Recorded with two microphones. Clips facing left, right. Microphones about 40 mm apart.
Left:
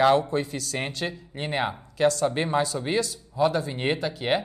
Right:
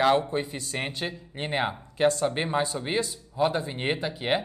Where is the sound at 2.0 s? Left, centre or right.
Right.